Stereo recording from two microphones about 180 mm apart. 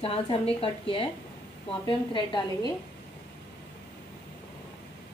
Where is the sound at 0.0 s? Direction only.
30° left (ahead or behind).